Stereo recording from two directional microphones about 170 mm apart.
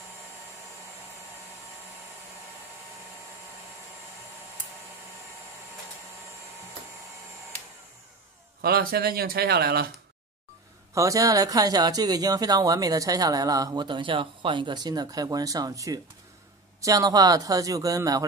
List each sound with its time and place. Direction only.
8.5 s speech: 65° right (ahead or behind)
11.0 s speech: 20° right (ahead or behind)